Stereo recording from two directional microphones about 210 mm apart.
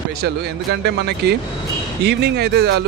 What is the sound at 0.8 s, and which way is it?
Speech, 50° right (ahead or behind).